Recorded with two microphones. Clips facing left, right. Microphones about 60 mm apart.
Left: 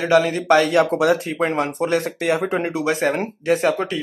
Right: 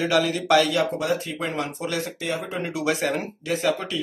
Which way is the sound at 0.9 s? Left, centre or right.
Left.